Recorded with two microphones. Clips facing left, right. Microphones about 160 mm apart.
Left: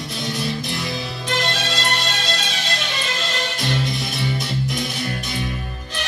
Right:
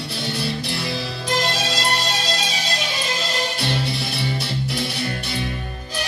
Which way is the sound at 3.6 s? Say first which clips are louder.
Left 1 dB; 35° right (ahead or behind).